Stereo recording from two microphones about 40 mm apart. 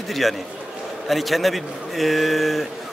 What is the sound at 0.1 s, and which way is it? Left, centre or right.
Speech, centre.